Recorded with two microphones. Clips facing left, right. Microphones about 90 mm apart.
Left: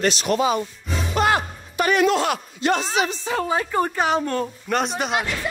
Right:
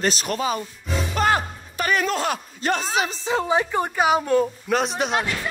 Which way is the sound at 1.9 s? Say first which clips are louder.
Left 4 dB; 40° right (ahead or behind).